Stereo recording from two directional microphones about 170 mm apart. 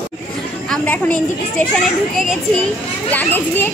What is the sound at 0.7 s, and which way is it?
Speech, 10° left (ahead or behind).